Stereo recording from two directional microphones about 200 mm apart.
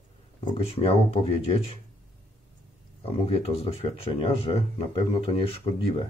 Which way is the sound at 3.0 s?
30° left (ahead or behind).